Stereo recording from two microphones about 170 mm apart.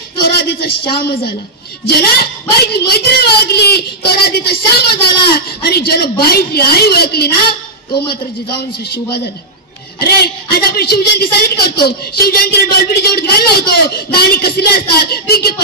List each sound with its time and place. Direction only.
0.8 s a woman's voice: 60° left (ahead or behind)
9.9 s a woman's voice: 65° left (ahead or behind)